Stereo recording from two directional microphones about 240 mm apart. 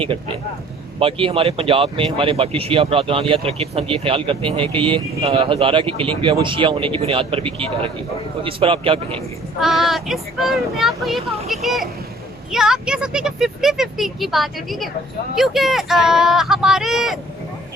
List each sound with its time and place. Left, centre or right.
0.9 s speech: right
9.6 s speech: centre